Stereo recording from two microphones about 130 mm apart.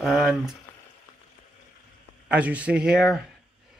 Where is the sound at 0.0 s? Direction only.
Centre (ahead or behind).